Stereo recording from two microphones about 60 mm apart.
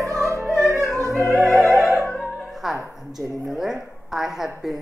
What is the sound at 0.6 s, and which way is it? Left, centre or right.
Opera, right.